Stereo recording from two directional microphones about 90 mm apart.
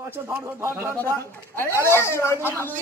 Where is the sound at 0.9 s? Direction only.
25° left (ahead or behind).